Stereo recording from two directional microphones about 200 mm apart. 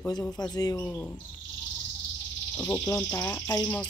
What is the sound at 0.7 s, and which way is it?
Speech, 5° left (ahead or behind).